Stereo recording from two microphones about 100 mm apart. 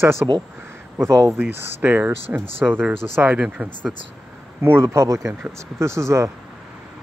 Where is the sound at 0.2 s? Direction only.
20° right (ahead or behind).